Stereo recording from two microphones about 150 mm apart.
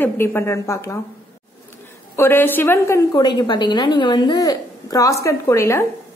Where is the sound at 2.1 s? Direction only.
15° left (ahead or behind).